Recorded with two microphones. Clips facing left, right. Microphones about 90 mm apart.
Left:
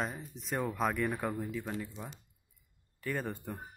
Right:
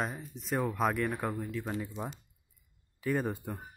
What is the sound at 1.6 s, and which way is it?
Speech, 15° right (ahead or behind).